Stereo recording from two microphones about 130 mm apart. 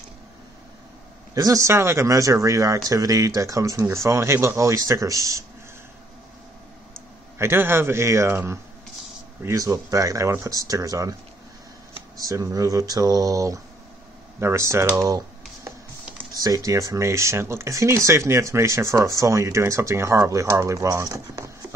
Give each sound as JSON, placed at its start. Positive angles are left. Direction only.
{"t": 1.3, "sound": "speech", "side_deg": -25}
{"t": 7.3, "sound": "speech", "side_deg": -20}
{"t": 12.2, "sound": "speech", "side_deg": -25}